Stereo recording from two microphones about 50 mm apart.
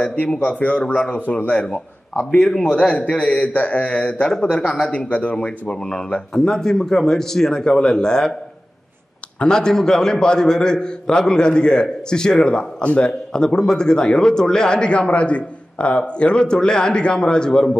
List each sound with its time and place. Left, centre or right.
0.0 s a man's voice: left
5.3 s a man's voice: centre
9.4 s a man's voice: centre